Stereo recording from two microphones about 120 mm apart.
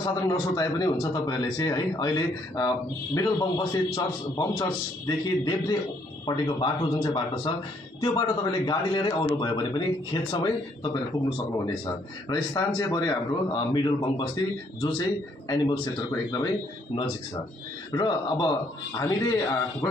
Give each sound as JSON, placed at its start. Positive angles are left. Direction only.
{"t": 0.0, "sound": "a man's voice", "side_deg": 35}
{"t": 17.9, "sound": "a man's voice", "side_deg": 40}